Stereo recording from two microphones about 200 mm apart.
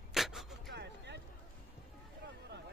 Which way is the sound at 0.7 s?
60° right (ahead or behind).